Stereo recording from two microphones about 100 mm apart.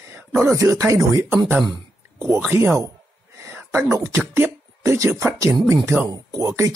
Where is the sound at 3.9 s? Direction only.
25° right (ahead or behind).